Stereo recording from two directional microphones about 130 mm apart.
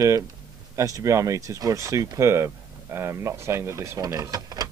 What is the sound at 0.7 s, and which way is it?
Speech, 25° right (ahead or behind).